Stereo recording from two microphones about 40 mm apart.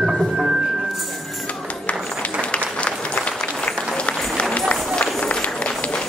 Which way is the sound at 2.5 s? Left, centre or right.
Left.